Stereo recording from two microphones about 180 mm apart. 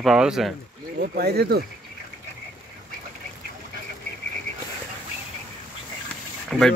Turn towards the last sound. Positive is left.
turn(degrees=5)  # may be behind; listen again after turning